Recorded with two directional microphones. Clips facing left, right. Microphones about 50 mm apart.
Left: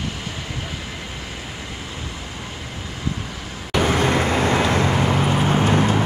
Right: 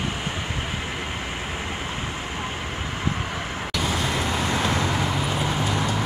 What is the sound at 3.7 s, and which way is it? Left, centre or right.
Vehicle, left.